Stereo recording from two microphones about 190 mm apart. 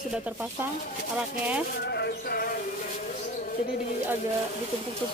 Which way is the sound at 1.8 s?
55° left (ahead or behind).